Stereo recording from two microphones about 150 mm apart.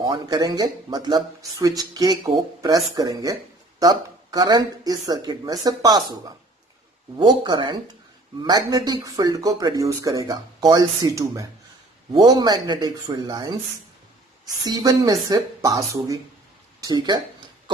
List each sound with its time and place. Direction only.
0.0 s speech: 25° right (ahead or behind)
14.6 s speech: 25° right (ahead or behind)
17.7 s pig: 30° right (ahead or behind)